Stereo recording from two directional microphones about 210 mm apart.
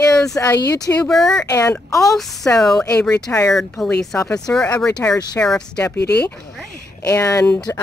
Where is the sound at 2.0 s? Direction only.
Centre (ahead or behind).